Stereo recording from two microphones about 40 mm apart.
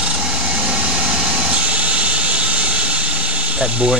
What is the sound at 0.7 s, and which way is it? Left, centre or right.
Vehicle, right.